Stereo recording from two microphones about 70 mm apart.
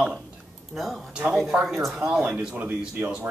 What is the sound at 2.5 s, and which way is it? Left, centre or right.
Speech, right.